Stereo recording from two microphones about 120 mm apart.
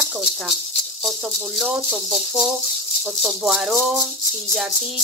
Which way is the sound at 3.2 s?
5° right (ahead or behind).